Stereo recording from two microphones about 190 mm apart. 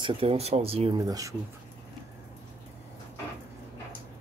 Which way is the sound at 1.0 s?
20° right (ahead or behind).